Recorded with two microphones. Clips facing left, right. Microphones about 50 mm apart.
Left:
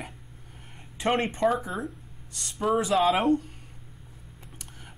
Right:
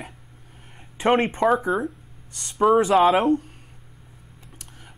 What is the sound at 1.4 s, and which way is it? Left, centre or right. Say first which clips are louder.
Speech: right 5 dB; centre.